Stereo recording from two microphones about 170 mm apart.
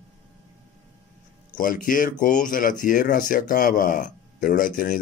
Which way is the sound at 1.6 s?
55° left (ahead or behind).